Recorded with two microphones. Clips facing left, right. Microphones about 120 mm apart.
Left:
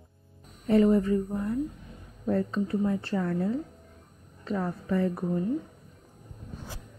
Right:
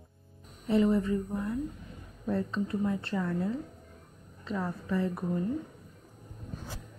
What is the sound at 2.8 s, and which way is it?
Speech, 25° left (ahead or behind).